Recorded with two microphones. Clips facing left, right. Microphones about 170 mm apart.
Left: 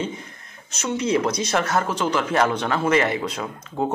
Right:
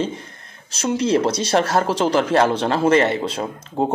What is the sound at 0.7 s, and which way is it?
Speech, 35° right (ahead or behind).